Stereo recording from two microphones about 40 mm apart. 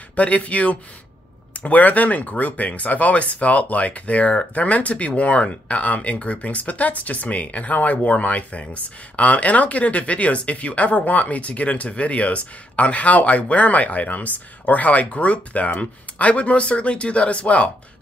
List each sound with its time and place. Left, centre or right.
0.1 s speech: left
4.6 s speech: left